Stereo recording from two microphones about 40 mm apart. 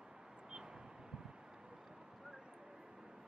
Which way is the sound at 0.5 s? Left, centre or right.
Centre.